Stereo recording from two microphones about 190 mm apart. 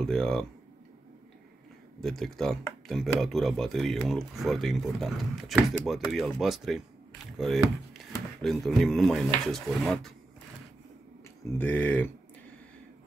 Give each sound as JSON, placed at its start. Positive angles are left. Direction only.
{"t": 0.0, "sound": "speech", "side_deg": 5}
{"t": 2.0, "sound": "speech", "side_deg": 0}
{"t": 11.5, "sound": "speech", "side_deg": 10}